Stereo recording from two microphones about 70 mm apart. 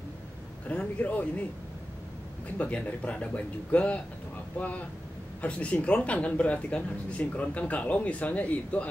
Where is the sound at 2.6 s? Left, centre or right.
Centre.